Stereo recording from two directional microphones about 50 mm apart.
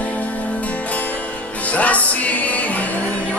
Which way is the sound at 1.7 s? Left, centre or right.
Left.